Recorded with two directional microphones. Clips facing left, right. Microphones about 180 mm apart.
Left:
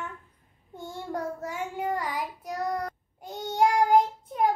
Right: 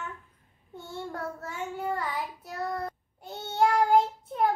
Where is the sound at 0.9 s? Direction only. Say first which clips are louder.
Left 3 dB; 15° left (ahead or behind).